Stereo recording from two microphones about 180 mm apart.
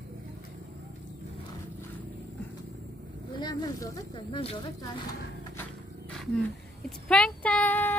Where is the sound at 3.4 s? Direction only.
20° left (ahead or behind).